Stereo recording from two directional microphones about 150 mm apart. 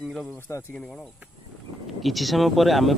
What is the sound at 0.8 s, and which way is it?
Speech, centre (ahead or behind).